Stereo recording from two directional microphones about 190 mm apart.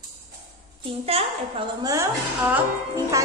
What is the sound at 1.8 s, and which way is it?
Speech, 20° right (ahead or behind).